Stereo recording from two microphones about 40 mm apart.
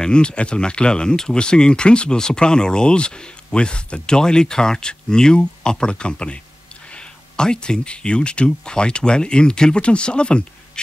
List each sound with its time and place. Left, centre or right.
0.0 s speech: left